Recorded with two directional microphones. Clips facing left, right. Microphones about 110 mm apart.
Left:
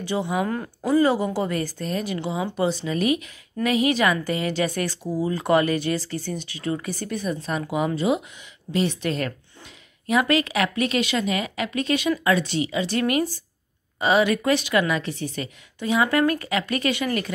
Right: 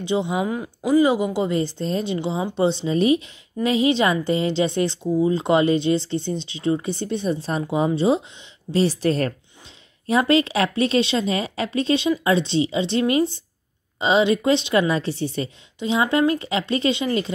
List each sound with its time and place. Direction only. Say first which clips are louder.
0.0 s a woman's voice: right 2 dB; 20° right (ahead or behind)